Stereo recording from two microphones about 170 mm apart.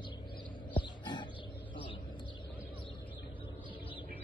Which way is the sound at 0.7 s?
25° left (ahead or behind).